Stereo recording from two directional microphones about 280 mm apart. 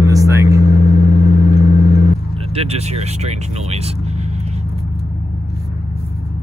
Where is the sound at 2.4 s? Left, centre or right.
Right.